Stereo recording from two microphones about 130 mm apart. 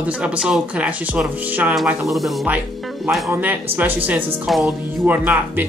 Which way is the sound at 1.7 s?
Centre (ahead or behind).